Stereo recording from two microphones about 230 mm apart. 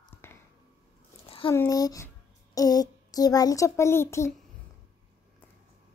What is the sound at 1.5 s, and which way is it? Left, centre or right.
A woman's voice, centre.